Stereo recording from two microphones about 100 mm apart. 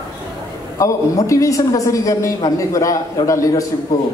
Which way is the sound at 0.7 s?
35° left (ahead or behind).